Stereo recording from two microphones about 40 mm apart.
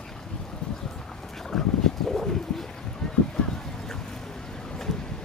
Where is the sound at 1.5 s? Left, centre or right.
Centre.